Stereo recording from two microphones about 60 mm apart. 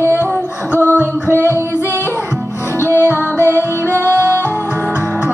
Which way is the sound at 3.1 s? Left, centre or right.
Right.